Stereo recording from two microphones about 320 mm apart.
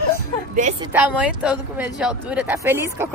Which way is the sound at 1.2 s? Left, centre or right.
Centre.